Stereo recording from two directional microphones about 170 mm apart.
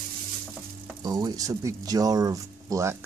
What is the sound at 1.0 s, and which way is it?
Speech, 25° right (ahead or behind).